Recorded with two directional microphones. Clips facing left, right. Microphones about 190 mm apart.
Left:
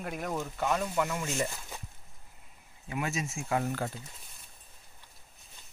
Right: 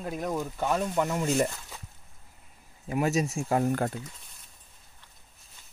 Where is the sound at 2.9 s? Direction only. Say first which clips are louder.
Right 8 dB; 40° right (ahead or behind).